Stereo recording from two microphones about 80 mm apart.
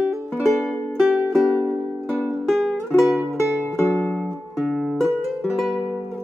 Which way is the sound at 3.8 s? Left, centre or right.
Left.